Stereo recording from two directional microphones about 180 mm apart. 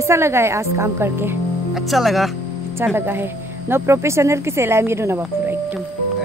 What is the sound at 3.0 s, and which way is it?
Speech, 10° right (ahead or behind).